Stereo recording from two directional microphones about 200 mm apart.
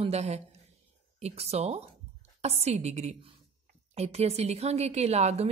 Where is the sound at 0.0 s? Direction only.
30° right (ahead or behind).